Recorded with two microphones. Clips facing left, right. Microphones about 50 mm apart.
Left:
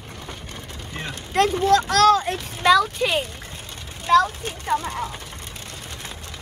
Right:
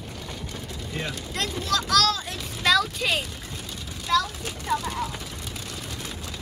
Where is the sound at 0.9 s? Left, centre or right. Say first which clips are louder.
Left 4 dB; left.